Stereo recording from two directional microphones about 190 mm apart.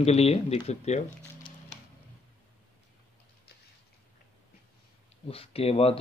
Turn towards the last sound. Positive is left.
turn(degrees=30)  # may be behind; listen again after turning